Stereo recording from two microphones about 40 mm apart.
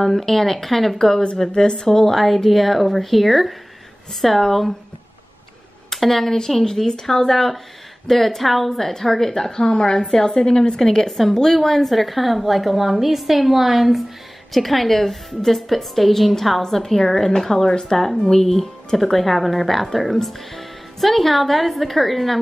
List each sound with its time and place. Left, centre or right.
0.0 s a woman's voice: centre
1.5 s speech: left
1.9 s a woman's voice: centre
5.9 s a woman's voice: centre